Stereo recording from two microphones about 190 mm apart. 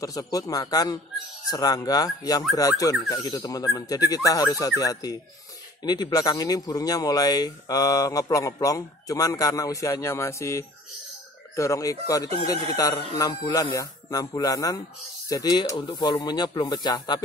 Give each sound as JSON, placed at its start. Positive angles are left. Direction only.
{"t": 0.0, "sound": "speech", "side_deg": 20}